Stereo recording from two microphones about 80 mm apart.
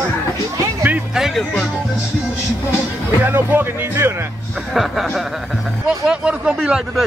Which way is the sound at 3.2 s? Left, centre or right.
Right.